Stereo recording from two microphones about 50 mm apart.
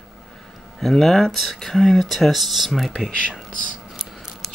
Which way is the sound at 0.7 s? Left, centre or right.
Centre.